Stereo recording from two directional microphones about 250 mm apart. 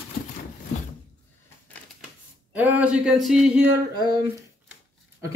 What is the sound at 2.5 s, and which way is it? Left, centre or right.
Speech, centre.